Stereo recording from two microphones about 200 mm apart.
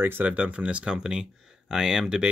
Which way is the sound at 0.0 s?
10° right (ahead or behind).